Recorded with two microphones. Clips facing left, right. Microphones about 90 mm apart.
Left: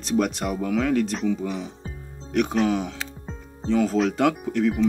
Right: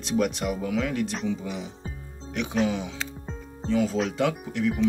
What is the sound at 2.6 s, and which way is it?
Speech, 50° left (ahead or behind).